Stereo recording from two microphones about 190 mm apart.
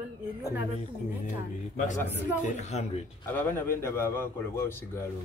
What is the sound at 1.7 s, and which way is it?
Speech, 40° left (ahead or behind).